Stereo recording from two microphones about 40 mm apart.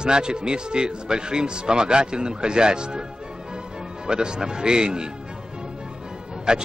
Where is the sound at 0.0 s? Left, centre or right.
Right.